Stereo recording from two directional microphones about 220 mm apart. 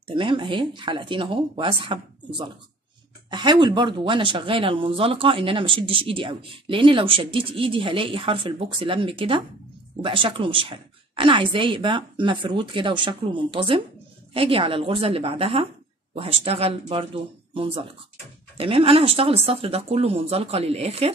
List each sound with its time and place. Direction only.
0.0 s speech: 20° right (ahead or behind)